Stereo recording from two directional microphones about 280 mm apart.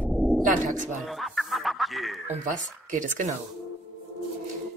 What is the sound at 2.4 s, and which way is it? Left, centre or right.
Speech, right.